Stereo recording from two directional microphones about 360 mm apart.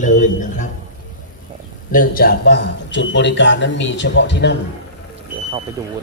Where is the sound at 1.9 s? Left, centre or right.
Left.